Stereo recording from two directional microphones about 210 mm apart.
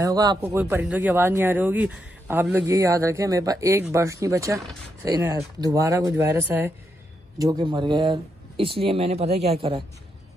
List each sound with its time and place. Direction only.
0.0 s speech: 20° right (ahead or behind)